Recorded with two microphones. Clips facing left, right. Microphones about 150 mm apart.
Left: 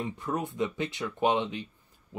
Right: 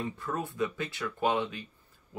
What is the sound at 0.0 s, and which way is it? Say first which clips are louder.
Speech: left 2 dB; 20° left (ahead or behind).